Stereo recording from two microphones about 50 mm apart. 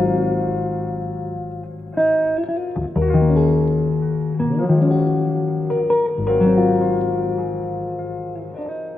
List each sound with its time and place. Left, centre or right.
0.0 s music: centre
2.0 s music: centre
3.3 s music: left